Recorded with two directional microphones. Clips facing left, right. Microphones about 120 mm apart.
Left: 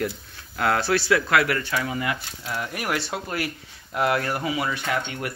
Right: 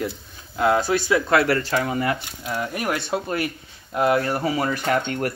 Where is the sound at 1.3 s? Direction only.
30° right (ahead or behind).